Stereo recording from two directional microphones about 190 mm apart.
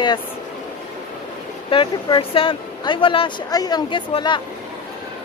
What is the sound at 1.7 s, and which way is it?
Speech, 25° left (ahead or behind).